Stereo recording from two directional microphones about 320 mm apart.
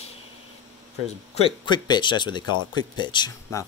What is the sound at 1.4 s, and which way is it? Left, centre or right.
Speech, centre.